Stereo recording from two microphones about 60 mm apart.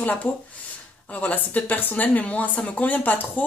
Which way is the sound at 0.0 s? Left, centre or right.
Left.